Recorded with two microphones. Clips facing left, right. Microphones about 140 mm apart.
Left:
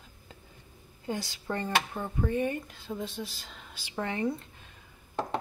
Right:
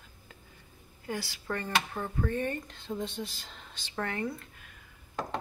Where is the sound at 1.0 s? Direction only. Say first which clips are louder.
Left 2 dB; 20° left (ahead or behind).